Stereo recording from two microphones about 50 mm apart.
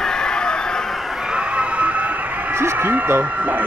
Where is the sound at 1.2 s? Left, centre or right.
Centre.